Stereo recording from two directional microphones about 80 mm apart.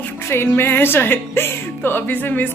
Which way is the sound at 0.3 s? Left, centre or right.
Left.